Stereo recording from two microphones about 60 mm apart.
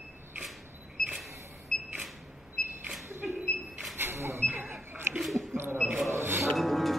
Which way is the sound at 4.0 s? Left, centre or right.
Right.